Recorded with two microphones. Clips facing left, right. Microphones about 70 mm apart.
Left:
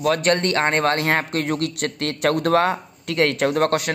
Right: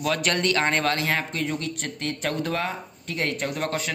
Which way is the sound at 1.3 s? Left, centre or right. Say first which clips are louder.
Left 5 dB; left.